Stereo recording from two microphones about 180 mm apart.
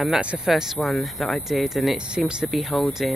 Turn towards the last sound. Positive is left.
turn(degrees=0)  # may be behind; listen again after turning